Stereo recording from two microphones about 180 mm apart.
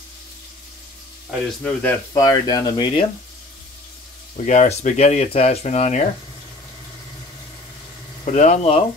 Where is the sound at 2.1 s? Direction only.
20° left (ahead or behind).